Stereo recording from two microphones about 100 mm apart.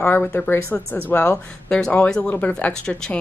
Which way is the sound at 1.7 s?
5° left (ahead or behind).